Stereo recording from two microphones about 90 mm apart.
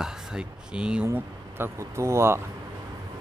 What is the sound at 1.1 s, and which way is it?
Speech, 30° right (ahead or behind).